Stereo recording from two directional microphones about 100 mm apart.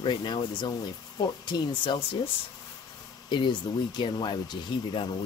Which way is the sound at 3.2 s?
50° left (ahead or behind).